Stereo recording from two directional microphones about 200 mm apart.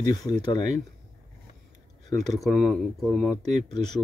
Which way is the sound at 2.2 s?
Centre (ahead or behind).